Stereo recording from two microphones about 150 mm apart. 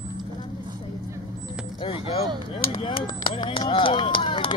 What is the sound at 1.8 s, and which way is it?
Speech, 35° left (ahead or behind).